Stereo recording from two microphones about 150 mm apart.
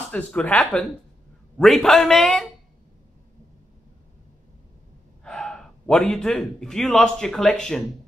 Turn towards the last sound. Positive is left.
turn(degrees=5)  # may be behind; listen again after turning